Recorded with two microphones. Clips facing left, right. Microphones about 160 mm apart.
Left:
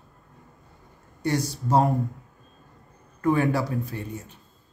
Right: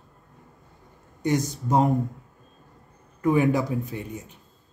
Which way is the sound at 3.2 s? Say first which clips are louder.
Right 1 dB; 15° right (ahead or behind).